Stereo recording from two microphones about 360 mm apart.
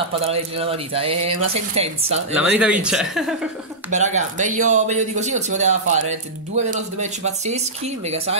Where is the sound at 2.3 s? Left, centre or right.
Centre.